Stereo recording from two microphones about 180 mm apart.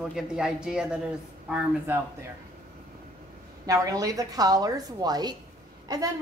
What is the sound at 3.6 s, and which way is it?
A woman's voice, 20° right (ahead or behind).